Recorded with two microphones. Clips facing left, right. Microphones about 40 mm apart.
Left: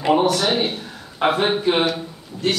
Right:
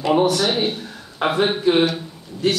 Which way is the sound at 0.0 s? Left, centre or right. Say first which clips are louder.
Even; centre.